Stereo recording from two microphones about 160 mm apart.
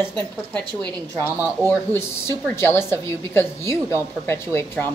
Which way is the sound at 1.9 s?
15° left (ahead or behind).